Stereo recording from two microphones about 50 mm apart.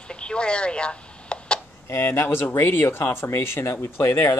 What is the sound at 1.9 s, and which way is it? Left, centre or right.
Speech, left.